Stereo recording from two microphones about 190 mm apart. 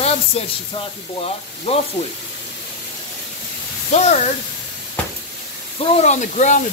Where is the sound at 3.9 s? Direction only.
40° left (ahead or behind).